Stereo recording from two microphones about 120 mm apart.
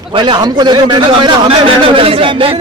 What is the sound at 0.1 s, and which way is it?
A man's voice, 40° right (ahead or behind).